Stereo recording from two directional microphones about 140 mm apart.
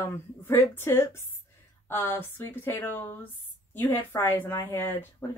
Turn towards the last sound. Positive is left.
turn(degrees=15)  # may be behind; listen again after turning